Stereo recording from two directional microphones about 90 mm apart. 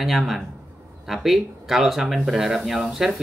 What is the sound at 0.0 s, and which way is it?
Speech, centre (ahead or behind).